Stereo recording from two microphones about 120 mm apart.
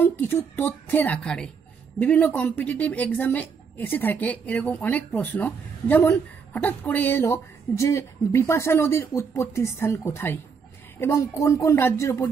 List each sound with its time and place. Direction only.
0.0 s a woman's voice: 15° left (ahead or behind)